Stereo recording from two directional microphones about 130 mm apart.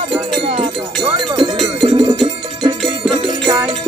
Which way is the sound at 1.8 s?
40° right (ahead or behind).